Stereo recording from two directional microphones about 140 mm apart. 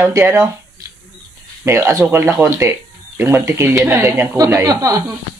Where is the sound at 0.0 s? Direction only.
15° right (ahead or behind).